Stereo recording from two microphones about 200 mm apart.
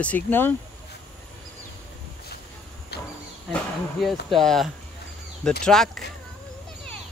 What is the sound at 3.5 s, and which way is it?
Insect, centre (ahead or behind).